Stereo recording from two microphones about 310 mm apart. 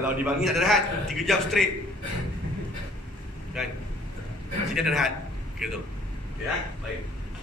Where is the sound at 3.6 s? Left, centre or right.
Centre.